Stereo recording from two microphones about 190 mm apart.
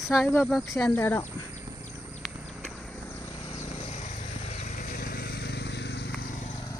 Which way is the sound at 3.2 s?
30° left (ahead or behind).